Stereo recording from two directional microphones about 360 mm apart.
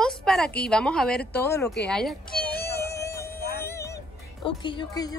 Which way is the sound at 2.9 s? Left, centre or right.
Centre.